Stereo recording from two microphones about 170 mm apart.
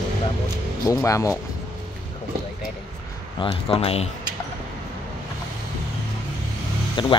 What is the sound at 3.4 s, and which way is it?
Speech, 30° left (ahead or behind).